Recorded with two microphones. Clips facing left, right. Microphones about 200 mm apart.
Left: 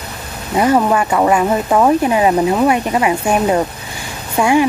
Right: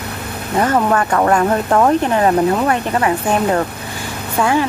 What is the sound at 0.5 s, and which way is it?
Speech, 10° left (ahead or behind).